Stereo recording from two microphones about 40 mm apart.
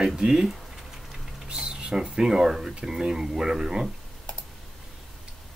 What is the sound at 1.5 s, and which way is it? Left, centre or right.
Speech, centre.